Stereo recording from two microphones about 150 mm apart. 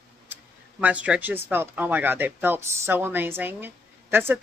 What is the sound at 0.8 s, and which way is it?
Speech, 10° right (ahead or behind).